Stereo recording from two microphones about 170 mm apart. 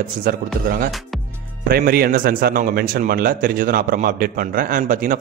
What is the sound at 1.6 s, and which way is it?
Speech, 65° right (ahead or behind).